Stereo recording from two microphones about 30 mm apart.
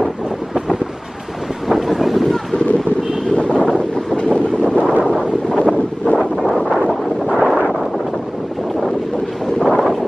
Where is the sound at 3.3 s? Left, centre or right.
Left.